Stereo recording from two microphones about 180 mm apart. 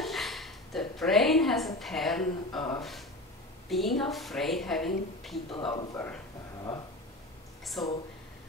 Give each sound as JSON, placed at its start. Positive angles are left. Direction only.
{"t": 0.0, "sound": "a sound", "side_deg": 0}
{"t": 1.8, "sound": "a woman's voice", "side_deg": 0}
{"t": 3.6, "sound": "a woman's voice", "side_deg": 0}
{"t": 5.5, "sound": "speech", "side_deg": 30}
{"t": 5.9, "sound": "speech", "side_deg": 10}
{"t": 7.8, "sound": "a woman's voice", "side_deg": 5}